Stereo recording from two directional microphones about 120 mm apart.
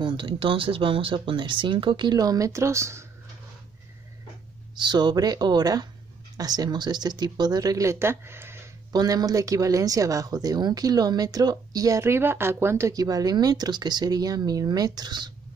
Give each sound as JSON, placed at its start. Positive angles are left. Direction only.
{"t": 0.0, "sound": "speech", "side_deg": -45}
{"t": 4.7, "sound": "speech", "side_deg": -40}
{"t": 8.9, "sound": "speech", "side_deg": -30}